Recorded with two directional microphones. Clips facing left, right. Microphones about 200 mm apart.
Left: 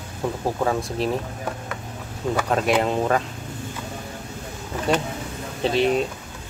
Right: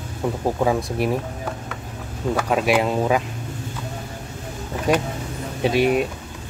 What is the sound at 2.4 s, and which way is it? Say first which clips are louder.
Speech: right 1 dB; 10° right (ahead or behind).